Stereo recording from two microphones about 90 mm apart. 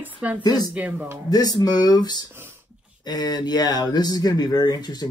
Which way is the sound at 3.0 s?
50° left (ahead or behind).